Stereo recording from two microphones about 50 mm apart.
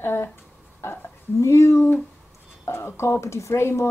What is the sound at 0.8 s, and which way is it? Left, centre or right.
A woman's voice, left.